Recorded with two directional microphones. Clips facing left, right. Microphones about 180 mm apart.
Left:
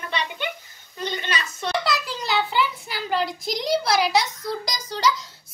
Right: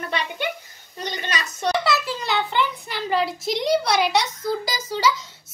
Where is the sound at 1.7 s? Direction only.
Centre (ahead or behind).